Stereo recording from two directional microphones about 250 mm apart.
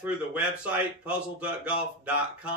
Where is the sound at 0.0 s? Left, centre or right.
Centre.